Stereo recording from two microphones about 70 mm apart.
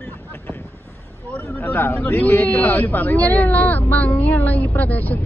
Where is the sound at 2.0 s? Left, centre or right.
Left.